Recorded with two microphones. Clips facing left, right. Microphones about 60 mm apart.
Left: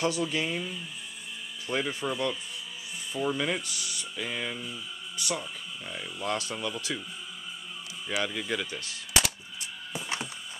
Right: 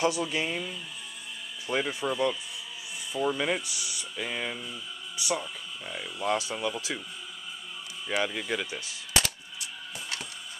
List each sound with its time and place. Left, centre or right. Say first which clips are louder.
0.0 s speech: right 1 dB; centre
8.2 s speech: right 1 dB; centre
9.1 s coin: left 1 dB; centre
9.6 s a sound: left 2 dB; left